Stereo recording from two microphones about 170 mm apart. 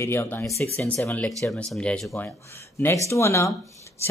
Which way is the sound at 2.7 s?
15° left (ahead or behind).